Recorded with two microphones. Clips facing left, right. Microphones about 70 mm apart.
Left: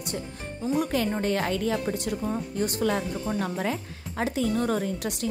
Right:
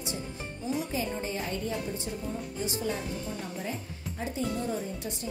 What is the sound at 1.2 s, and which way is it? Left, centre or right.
A woman's voice, left.